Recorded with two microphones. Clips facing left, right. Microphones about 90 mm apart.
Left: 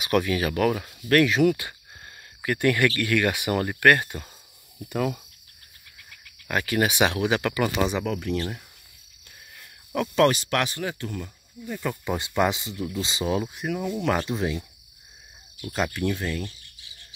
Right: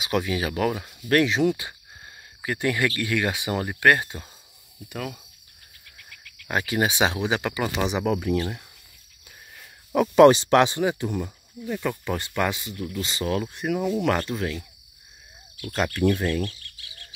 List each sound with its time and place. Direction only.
0.0 s speech: 15° right (ahead or behind)
4.9 s speech: 5° left (ahead or behind)
6.4 s speech: 20° right (ahead or behind); by 8.6 s 5° right (ahead or behind)
9.9 s speech: 15° right (ahead or behind)
12.0 s speech: 15° left (ahead or behind)
13.7 s speech: 10° right (ahead or behind)
14.2 s speech: 20° left (ahead or behind)
15.7 s speech: centre (ahead or behind)